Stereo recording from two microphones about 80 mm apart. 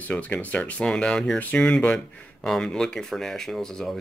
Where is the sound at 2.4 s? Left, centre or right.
Centre.